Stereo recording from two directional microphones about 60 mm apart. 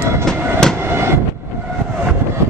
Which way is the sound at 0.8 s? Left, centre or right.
Right.